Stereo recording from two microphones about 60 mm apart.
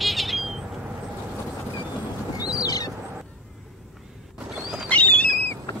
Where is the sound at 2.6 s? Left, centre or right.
Left.